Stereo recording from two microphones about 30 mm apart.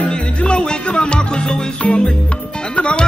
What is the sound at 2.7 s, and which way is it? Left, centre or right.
Music, left.